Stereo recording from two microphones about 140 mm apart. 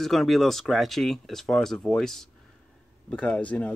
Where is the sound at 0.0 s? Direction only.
Centre (ahead or behind).